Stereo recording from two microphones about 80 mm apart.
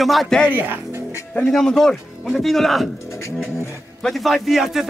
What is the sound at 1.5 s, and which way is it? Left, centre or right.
A man's voice, centre.